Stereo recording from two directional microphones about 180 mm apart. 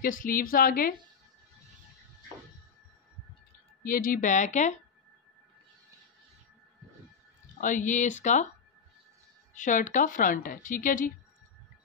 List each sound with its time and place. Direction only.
0.0 s speech: 50° left (ahead or behind)
3.8 s speech: 50° left (ahead or behind)
7.6 s speech: 45° left (ahead or behind)
9.5 s speech: 45° left (ahead or behind)